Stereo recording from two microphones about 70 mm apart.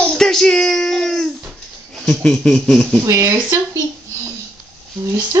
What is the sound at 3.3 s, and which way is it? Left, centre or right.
Speech, right.